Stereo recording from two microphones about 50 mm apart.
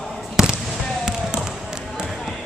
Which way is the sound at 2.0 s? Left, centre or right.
Centre.